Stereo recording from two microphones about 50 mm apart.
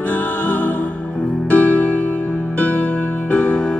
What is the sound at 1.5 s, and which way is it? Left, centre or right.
Music, left.